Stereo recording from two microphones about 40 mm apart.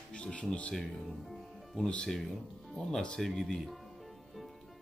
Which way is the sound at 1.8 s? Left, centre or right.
Left.